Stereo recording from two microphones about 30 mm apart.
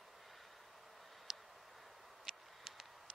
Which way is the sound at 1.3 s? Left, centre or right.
Right.